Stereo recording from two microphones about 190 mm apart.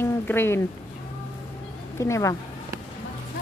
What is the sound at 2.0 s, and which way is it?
Speech, 15° left (ahead or behind).